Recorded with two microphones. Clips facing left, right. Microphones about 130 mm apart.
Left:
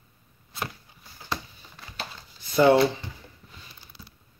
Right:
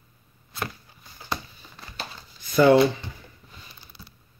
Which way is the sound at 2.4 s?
25° left (ahead or behind).